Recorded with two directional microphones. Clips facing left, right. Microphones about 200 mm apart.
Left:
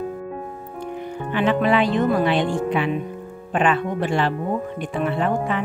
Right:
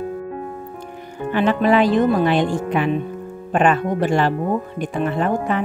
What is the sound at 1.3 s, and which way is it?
Speech, 40° right (ahead or behind).